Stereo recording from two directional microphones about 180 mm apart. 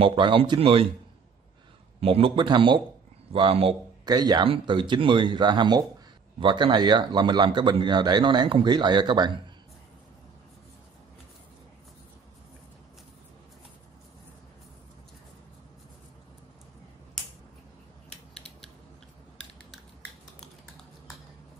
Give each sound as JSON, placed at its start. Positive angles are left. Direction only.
{"t": 0.0, "sound": "speech", "side_deg": -30}
{"t": 2.0, "sound": "speech", "side_deg": -30}